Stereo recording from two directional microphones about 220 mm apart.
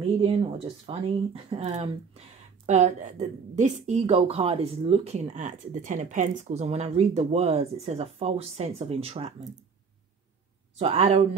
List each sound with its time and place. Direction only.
0.0 s speech: 25° right (ahead or behind)
10.8 s speech: 25° right (ahead or behind)